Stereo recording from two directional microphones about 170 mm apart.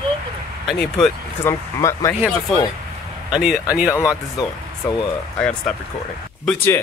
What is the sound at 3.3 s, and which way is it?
Speech, centre (ahead or behind).